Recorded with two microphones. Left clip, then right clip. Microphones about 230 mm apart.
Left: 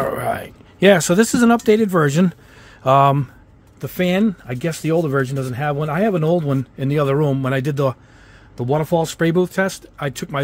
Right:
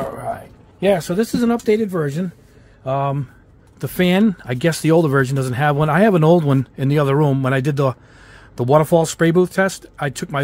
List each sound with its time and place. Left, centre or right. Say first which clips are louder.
0.0 s speech: left 4 dB; left
3.8 s speech: right 2 dB; centre